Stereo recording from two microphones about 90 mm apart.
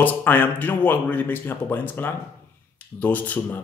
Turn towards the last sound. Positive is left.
turn(degrees=20)  # may be behind; listen again after turning